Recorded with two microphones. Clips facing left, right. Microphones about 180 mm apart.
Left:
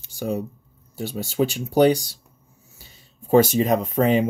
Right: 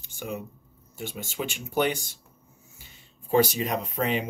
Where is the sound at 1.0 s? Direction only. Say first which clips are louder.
Left 10 dB; 35° left (ahead or behind).